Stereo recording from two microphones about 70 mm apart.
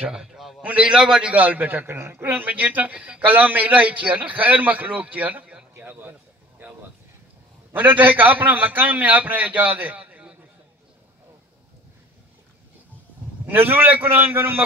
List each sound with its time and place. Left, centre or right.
0.0 s a man's voice: centre
0.6 s a man's voice: centre
1.3 s a man's voice: right
1.9 s a man's voice: right; by 5.7 s centre
5.8 s speech: right
7.7 s a man's voice: right
13.5 s a man's voice: right